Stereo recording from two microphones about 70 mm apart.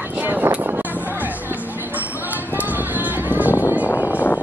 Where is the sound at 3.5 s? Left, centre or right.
Left.